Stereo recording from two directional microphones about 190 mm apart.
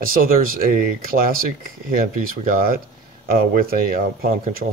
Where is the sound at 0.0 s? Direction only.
50° right (ahead or behind).